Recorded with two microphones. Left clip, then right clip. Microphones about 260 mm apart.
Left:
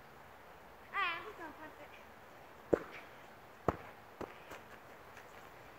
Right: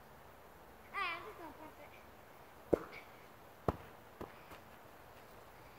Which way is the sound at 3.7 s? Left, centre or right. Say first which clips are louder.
Left 3 dB; centre.